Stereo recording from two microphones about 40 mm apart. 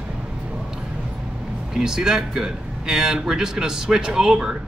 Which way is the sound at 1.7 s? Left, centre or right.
Centre.